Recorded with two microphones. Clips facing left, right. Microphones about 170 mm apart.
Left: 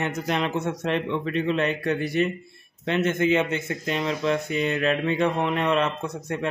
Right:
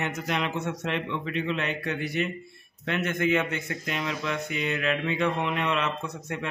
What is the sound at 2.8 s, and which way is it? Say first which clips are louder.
A man's voice: left 4 dB; 25° left (ahead or behind).